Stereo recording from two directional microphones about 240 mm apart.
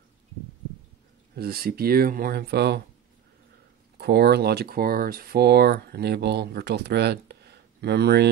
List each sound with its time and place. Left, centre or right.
1.3 s speech: right
4.0 s speech: right